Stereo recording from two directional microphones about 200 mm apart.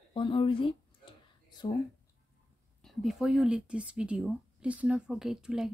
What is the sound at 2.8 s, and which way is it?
Speech, centre (ahead or behind).